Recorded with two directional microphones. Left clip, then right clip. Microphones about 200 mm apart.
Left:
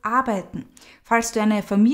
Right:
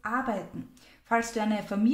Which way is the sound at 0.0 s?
45° left (ahead or behind).